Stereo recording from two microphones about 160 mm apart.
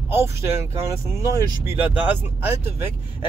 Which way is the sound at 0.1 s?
15° right (ahead or behind).